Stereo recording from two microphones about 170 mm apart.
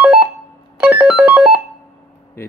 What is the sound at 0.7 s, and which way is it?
Music, 5° right (ahead or behind).